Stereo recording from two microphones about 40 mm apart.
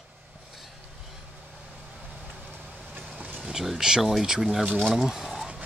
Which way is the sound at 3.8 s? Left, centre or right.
Centre.